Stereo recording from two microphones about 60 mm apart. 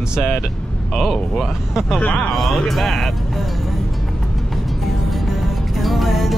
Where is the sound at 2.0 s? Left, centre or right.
Left.